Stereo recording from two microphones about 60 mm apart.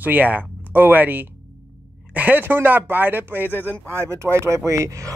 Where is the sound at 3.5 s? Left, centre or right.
Left.